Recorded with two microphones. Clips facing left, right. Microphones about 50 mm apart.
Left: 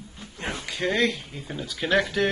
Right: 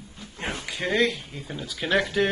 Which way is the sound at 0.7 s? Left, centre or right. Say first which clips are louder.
Left 3 dB; centre.